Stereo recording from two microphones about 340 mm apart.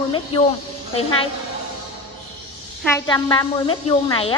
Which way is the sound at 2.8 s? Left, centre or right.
Centre.